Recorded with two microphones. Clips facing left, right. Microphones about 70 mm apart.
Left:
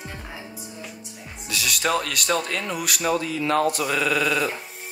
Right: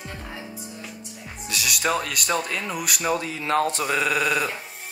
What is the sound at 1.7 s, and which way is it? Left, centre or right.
Chuckle, centre.